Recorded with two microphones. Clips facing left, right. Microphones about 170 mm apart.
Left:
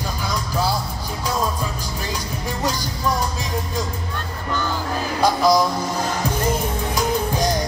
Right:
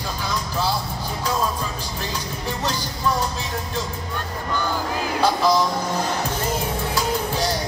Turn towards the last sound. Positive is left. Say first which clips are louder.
# left 2 dB
turn(degrees=15)  # may be behind; listen again after turning